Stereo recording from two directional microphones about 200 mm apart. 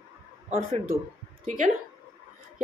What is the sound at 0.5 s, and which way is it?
Speech, 30° right (ahead or behind).